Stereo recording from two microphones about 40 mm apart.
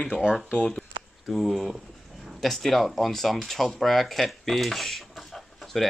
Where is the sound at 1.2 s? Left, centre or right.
Centre.